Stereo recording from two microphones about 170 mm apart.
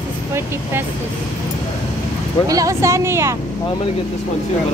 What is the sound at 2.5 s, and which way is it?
Speech, 20° right (ahead or behind).